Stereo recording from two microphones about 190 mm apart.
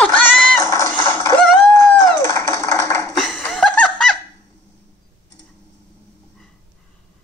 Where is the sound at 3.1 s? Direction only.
Centre (ahead or behind).